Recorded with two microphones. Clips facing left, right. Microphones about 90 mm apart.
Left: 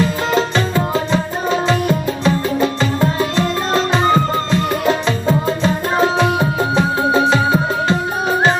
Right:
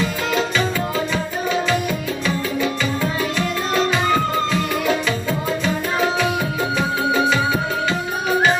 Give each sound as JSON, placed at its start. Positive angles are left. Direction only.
{"t": 0.3, "sound": "music", "side_deg": 35}
{"t": 5.6, "sound": "tabla", "side_deg": 35}